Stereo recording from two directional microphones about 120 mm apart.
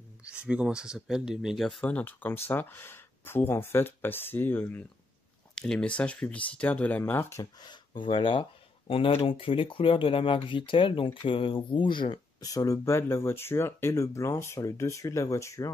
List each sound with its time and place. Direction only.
0.2 s speech: 10° right (ahead or behind)
1.9 s speech: 15° left (ahead or behind)
5.5 s speech: 5° left (ahead or behind); by 7.4 s 20° left (ahead or behind)
7.6 s speech: 40° left (ahead or behind); by 15.7 s 25° left (ahead or behind)